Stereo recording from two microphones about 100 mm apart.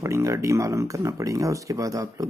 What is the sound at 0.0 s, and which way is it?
Speech, 30° right (ahead or behind).